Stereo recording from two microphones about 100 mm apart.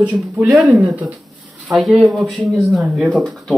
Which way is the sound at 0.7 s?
15° right (ahead or behind).